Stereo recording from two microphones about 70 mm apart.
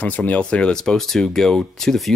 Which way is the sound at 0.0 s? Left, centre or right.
Left.